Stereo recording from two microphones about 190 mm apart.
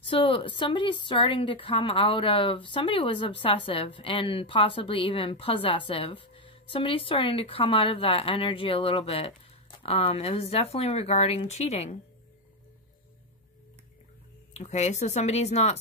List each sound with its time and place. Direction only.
0.1 s speech: 30° left (ahead or behind)
14.5 s speech: 35° left (ahead or behind)